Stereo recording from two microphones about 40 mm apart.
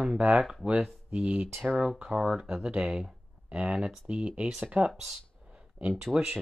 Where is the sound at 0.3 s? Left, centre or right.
Centre.